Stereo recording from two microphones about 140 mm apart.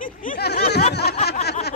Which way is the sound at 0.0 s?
75° left (ahead or behind).